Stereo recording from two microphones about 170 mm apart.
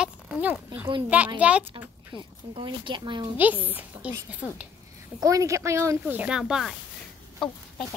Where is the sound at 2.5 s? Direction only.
30° right (ahead or behind).